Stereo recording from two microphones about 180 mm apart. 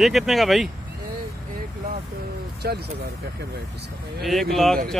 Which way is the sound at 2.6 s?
60° right (ahead or behind).